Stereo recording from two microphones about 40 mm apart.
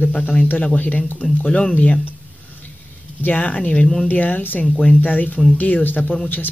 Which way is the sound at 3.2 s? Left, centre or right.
Left.